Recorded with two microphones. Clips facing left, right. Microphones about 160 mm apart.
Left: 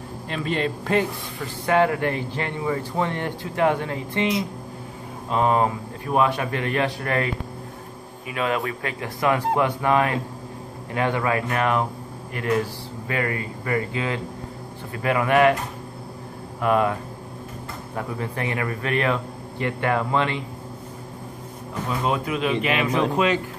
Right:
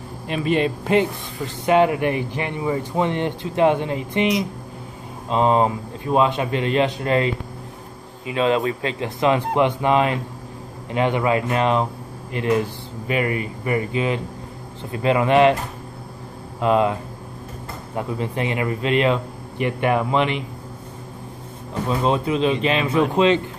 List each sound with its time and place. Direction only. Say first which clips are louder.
0.3 s a man's voice: right 5 dB; 15° right (ahead or behind)
16.5 s speech: right 2 dB; 20° right (ahead or behind)
21.8 s speech: right 4 dB; 25° right (ahead or behind)